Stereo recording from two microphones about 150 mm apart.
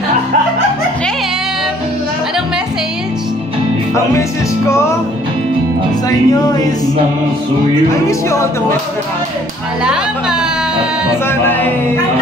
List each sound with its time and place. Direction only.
4.6 s music: 20° left (ahead or behind)
6.0 s speech: 25° left (ahead or behind)
11.2 s music: 15° left (ahead or behind)